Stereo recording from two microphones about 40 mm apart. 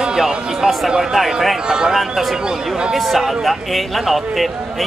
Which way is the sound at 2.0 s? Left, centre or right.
Centre.